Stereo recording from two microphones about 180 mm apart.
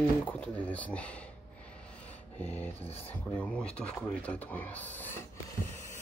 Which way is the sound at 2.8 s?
35° left (ahead or behind).